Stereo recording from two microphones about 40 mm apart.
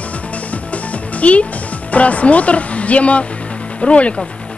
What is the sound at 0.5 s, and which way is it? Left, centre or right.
Music, left.